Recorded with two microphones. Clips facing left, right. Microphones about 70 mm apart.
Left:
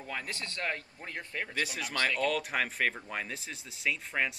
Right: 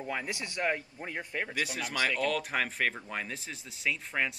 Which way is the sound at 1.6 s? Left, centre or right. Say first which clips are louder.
Even; centre.